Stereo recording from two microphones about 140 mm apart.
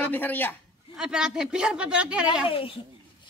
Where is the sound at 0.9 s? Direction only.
5° right (ahead or behind).